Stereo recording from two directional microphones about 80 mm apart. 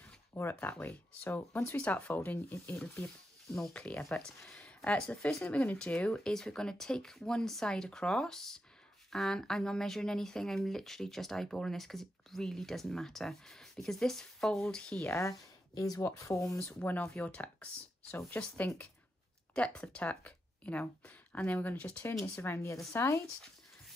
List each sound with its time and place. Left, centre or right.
0.3 s speech: left
1.9 s speech: left
3.5 s speech: centre
15.0 s speech: left; by 17.6 s centre
19.5 s speech: centre; by 23.2 s left